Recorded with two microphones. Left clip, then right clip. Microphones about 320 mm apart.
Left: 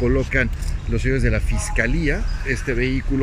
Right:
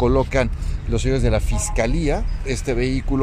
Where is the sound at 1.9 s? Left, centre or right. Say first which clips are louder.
Right 1 dB; right.